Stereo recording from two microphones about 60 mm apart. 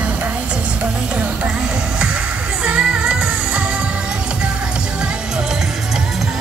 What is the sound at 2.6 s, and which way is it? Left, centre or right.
Music, centre.